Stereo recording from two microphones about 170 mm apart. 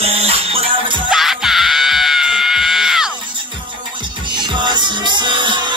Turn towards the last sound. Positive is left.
turn(degrees=-25)  # may be behind; listen again after turning